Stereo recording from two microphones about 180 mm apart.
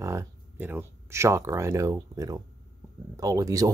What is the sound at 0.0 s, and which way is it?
Speech, 15° right (ahead or behind).